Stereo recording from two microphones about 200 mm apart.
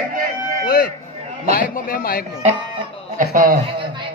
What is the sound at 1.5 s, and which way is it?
Speech, 45° left (ahead or behind).